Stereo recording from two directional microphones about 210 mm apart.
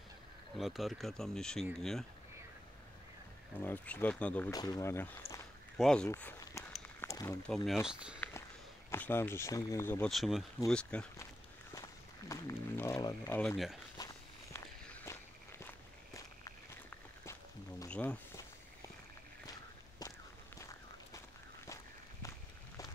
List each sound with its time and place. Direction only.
0.6 s speech: centre (ahead or behind)
3.6 s speech: 10° left (ahead or behind)
4.5 s speech: 15° left (ahead or behind)
6.0 s walk: 10° left (ahead or behind)
7.4 s speech: centre (ahead or behind)
8.2 s walk: 10° left (ahead or behind)
8.9 s speech: 10° left (ahead or behind)
12.3 s speech: 15° left (ahead or behind)
13.4 s speech: centre (ahead or behind)
13.9 s walk: 15° left (ahead or behind)